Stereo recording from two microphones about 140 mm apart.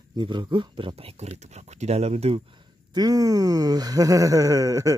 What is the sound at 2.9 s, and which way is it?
Speech, 25° right (ahead or behind).